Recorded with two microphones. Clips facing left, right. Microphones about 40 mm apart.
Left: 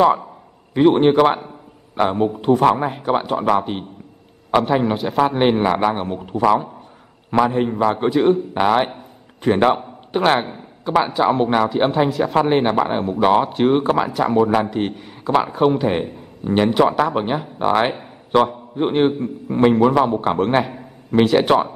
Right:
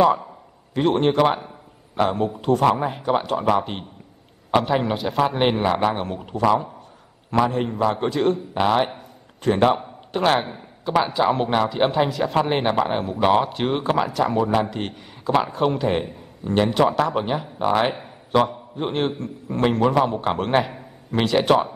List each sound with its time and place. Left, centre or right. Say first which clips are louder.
0.7 s a man's voice: left 5 dB; centre
2.7 s speech: left 2 dB; centre
3.5 s a man's voice: left 3 dB; centre
5.6 s speech: left 3 dB; centre
7.4 s speech: left 3 dB; centre
10.4 s a man's voice: left 2 dB; centre
21.4 s speech: left 2 dB; centre